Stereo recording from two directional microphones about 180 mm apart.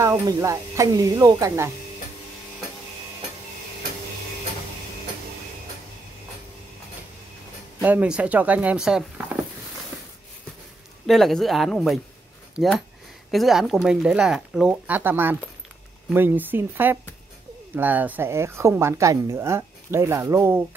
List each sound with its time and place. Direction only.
0.0 s speech: 15° right (ahead or behind)
7.8 s speech: 10° right (ahead or behind)
11.1 s speech: centre (ahead or behind)